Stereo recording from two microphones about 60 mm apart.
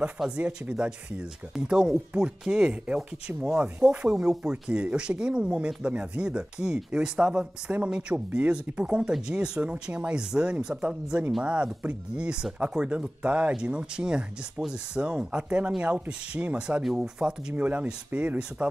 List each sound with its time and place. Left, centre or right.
0.4 s speech: centre
17.6 s speech: right